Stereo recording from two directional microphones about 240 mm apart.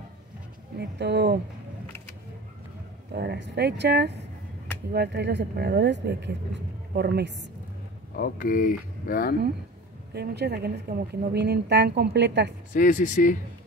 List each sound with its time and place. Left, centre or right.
0.7 s speech: right
3.2 s speech: right
8.2 s speech: left
10.1 s speech: right
12.7 s speech: left